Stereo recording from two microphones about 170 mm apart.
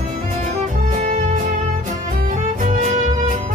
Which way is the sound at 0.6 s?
45° right (ahead or behind).